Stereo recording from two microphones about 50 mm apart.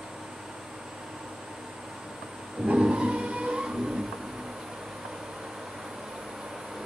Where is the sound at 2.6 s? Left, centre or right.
Centre.